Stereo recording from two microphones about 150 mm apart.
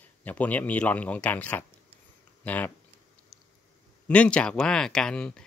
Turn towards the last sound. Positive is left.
turn(degrees=5)  # may be behind; listen again after turning